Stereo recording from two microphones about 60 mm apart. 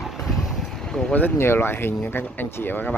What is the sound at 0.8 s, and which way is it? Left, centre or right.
Vehicle, centre.